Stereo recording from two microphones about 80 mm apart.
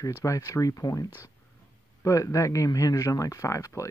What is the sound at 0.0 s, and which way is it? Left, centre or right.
Speech, left.